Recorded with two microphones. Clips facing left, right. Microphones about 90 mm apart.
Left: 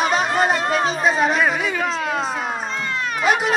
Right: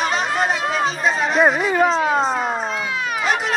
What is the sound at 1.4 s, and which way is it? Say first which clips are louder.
Speech: right 4 dB; 35° right (ahead or behind).